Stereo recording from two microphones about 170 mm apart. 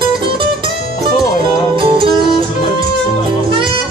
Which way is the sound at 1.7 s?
30° right (ahead or behind).